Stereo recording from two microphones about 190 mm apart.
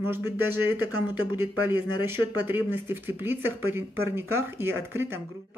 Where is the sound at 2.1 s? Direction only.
10° right (ahead or behind).